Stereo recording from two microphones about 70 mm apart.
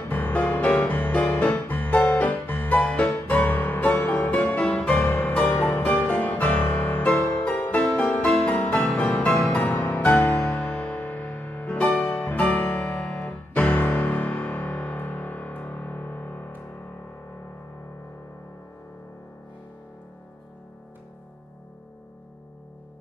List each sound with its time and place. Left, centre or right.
0.1 s music: left
4.1 s music: centre
4.9 s music: left
5.3 s music: centre
5.9 s harpsichord: centre
7.3 s music: centre
8.5 s music: centre
11.8 s music: centre
12.1 s music: left